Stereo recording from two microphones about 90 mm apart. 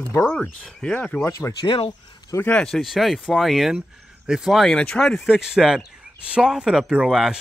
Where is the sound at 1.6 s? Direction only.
70° left (ahead or behind).